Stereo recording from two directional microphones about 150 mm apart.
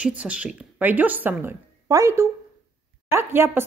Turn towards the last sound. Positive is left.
turn(degrees=-15)  # may be behind; listen again after turning